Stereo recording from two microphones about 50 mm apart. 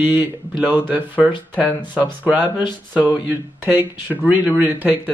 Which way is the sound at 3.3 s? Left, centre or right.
Right.